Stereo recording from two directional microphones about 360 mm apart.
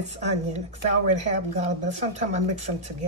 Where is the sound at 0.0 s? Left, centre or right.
Centre.